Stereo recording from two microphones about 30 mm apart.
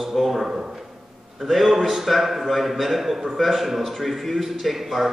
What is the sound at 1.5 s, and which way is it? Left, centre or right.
A man's voice, centre.